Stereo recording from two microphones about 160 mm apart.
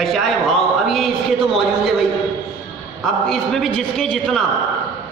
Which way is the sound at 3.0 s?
Centre (ahead or behind).